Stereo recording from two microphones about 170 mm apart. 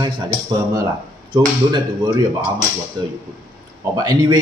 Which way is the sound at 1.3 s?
25° right (ahead or behind).